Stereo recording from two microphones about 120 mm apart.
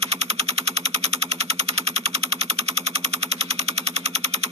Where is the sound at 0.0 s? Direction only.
60° right (ahead or behind).